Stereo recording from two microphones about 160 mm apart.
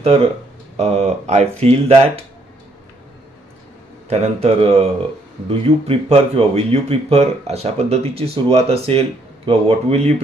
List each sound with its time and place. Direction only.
0.0 s speech: 35° right (ahead or behind)
4.1 s speech: 40° right (ahead or behind)